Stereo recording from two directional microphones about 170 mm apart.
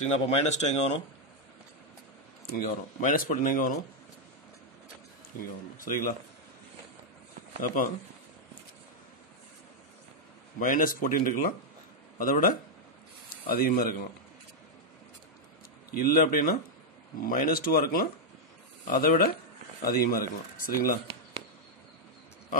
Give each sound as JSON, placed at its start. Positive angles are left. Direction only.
{"t": 0.0, "sound": "speech", "side_deg": 40}
{"t": 2.5, "sound": "speech", "side_deg": 50}
{"t": 5.3, "sound": "speech", "side_deg": 55}
{"t": 10.6, "sound": "speech", "side_deg": 55}
{"t": 15.9, "sound": "speech", "side_deg": 60}